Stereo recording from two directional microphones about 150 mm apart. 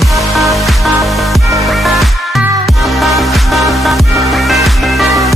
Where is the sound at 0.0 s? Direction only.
Centre (ahead or behind).